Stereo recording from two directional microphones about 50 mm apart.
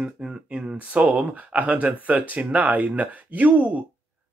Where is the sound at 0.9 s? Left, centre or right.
Right.